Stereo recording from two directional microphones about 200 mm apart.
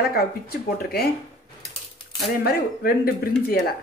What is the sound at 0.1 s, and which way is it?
Speech, 50° left (ahead or behind).